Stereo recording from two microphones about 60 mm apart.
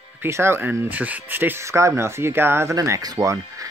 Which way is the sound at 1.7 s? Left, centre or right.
Right.